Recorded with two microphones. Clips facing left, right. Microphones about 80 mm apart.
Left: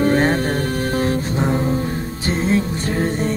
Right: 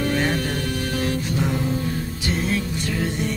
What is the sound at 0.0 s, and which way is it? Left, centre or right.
Music, left.